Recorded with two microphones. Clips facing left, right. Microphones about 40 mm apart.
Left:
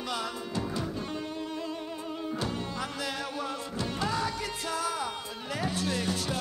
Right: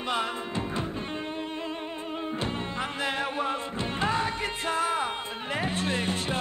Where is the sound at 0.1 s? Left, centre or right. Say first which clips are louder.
Right 5 dB; right.